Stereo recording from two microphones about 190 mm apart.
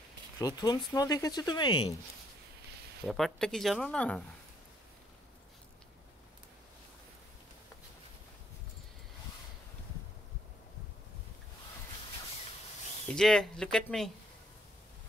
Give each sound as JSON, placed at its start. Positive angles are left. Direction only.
{"t": 0.4, "sound": "speech", "side_deg": 20}
{"t": 3.1, "sound": "speech", "side_deg": 0}
{"t": 13.1, "sound": "speech", "side_deg": 5}